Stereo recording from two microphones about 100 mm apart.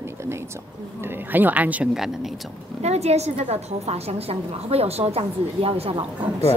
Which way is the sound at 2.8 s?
90° right.